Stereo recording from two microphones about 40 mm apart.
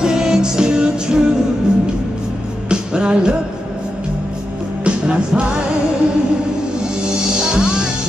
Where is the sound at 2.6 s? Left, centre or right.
Right.